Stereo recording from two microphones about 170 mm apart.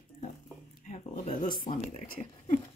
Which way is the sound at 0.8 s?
45° left (ahead or behind).